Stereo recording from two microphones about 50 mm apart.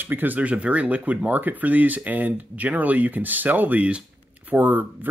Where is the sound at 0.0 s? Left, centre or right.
Right.